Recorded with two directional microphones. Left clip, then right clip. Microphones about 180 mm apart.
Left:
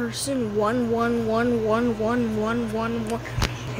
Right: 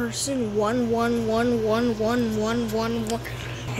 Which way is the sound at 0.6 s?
5° left (ahead or behind).